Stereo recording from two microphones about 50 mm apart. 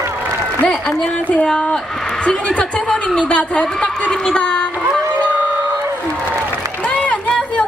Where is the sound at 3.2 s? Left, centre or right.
Left.